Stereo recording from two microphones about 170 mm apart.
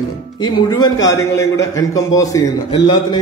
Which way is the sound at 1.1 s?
20° left (ahead or behind).